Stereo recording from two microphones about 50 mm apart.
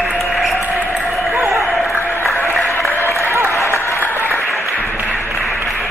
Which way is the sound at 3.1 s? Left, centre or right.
Left.